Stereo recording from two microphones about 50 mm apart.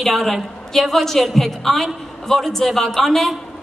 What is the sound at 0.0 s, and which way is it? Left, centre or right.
A woman's voice, centre.